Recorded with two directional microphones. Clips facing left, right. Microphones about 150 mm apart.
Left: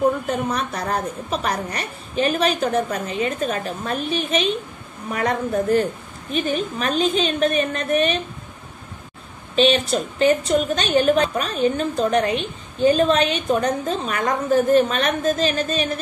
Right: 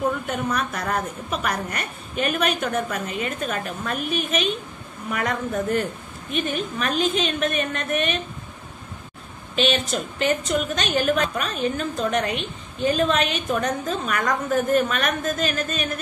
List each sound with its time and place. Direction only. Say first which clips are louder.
0.5 s a woman's voice: left 1 dB; 30° left (ahead or behind)
9.6 s a woman's voice: left 5 dB; 35° left (ahead or behind)